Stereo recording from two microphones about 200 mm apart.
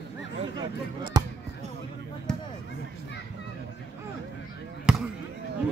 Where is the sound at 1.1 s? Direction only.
20° right (ahead or behind).